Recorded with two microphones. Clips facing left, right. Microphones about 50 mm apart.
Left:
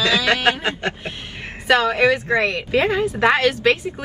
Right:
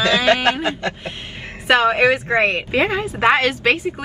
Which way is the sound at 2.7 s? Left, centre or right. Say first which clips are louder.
Left 1 dB; right.